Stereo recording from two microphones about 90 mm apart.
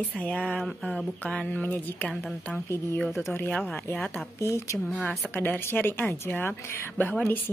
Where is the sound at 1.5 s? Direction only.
20° left (ahead or behind).